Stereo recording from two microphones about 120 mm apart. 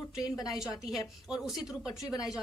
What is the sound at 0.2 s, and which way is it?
Speech, 30° left (ahead or behind).